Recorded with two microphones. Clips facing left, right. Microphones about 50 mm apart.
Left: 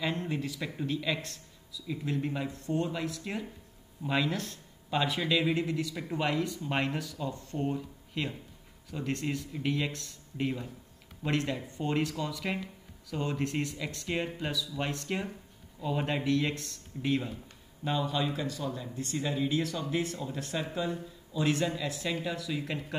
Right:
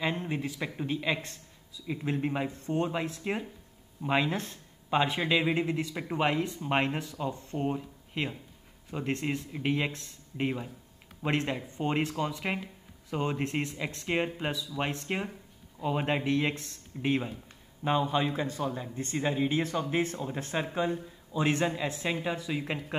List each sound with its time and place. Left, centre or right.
0.0 s speech: right